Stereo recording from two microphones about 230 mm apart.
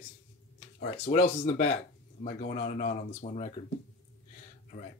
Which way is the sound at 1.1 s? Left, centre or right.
Left.